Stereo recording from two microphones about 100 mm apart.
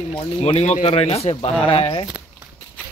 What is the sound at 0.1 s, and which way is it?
Speech, 85° left.